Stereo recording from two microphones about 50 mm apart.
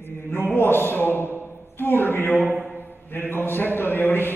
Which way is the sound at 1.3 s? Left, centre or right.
Left.